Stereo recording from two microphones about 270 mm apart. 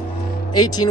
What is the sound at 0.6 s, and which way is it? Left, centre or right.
Speech, centre.